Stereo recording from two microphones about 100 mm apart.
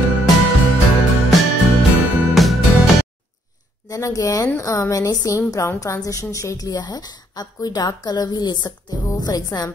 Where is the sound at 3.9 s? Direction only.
35° left (ahead or behind).